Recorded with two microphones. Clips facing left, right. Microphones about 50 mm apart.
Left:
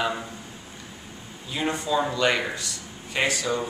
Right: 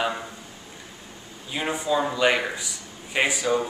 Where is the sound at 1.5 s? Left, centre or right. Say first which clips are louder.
Right 1 dB; centre.